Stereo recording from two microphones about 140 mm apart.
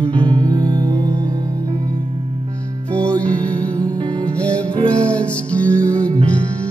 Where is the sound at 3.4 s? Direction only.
30° right (ahead or behind).